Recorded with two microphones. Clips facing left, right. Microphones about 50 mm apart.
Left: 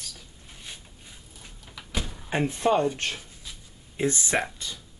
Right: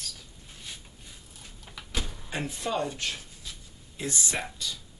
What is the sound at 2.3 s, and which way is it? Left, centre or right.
Speech, left.